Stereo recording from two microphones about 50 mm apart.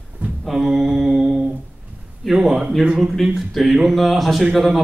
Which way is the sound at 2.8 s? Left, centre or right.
Centre.